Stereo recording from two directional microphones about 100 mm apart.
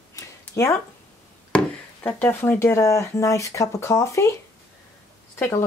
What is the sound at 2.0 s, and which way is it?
Speech, 20° left (ahead or behind).